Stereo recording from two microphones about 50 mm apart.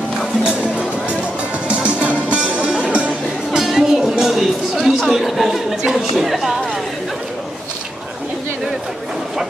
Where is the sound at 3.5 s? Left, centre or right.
Centre.